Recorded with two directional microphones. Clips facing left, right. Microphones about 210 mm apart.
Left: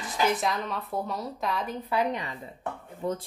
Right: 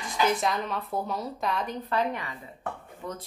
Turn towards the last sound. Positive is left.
turn(degrees=30)  # may be behind; listen again after turning